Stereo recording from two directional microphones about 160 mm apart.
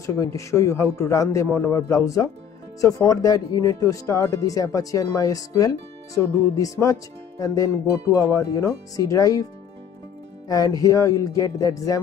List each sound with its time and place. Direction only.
0.0 s speech: 20° left (ahead or behind)
10.5 s speech: 20° left (ahead or behind)